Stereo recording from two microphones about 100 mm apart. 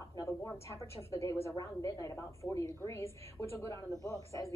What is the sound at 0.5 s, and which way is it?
A woman's voice, 30° left (ahead or behind).